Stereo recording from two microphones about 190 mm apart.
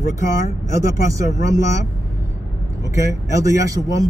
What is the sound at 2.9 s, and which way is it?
Speech, 15° right (ahead or behind).